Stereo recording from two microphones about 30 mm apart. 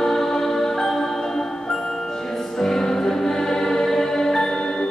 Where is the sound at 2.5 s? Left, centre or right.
Centre.